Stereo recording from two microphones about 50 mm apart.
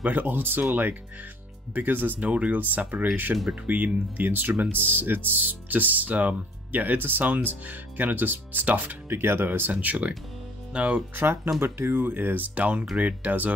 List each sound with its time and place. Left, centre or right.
0.0 s speech: right
2.1 s speech: right
11.1 s speech: right